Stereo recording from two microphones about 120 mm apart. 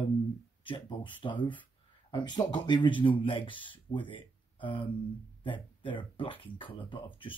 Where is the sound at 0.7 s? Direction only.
45° left (ahead or behind).